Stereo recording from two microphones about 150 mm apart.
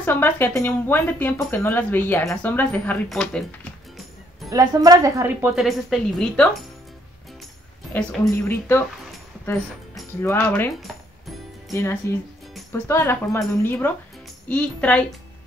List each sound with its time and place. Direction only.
0.0 s speech: 15° left (ahead or behind)
4.5 s a woman's voice: 20° right (ahead or behind)
5.6 s a woman's voice: centre (ahead or behind)
7.9 s speech: 10° left (ahead or behind)
10.2 s speech: 15° left (ahead or behind)
10.7 s music: centre (ahead or behind)
11.7 s speech: 15° left (ahead or behind)